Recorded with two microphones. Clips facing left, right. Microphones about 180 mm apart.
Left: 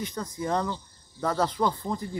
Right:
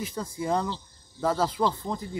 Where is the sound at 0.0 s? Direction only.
10° right (ahead or behind).